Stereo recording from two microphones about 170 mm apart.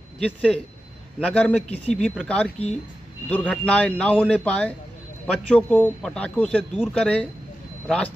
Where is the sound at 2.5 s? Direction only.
35° left (ahead or behind).